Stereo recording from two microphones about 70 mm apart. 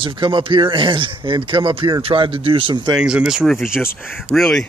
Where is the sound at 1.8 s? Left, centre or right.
Right.